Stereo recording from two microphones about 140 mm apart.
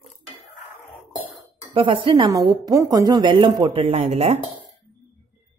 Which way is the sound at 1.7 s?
35° right (ahead or behind).